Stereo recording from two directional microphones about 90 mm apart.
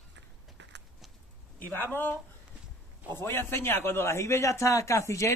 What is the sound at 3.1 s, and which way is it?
Speech, 25° left (ahead or behind).